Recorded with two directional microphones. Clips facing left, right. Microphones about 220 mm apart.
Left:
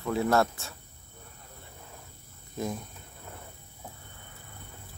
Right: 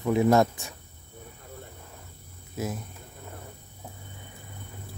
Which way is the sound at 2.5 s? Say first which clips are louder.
Right 1 dB; 5° right (ahead or behind).